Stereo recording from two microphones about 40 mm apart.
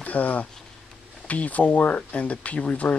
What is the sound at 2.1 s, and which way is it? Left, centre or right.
Speech, left.